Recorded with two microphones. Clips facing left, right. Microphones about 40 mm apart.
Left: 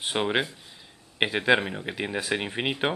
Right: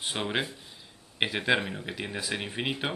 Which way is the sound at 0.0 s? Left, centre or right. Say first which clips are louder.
Left 5 dB; left.